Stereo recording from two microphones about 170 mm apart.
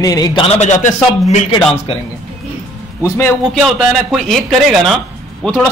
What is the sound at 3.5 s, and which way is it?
Speech, centre (ahead or behind).